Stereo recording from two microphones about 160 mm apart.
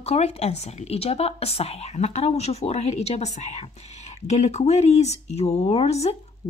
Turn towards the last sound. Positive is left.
turn(degrees=30)  # may be behind; listen again after turning